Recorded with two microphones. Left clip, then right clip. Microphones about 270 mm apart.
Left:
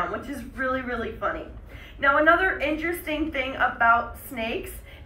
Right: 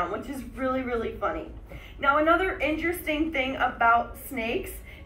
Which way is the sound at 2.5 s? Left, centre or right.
Left.